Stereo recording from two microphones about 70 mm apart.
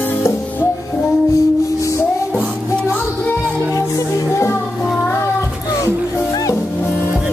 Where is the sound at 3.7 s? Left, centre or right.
Left.